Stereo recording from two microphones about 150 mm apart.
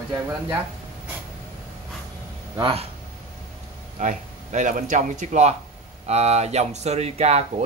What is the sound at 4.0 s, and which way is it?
A man's voice, 55° right (ahead or behind).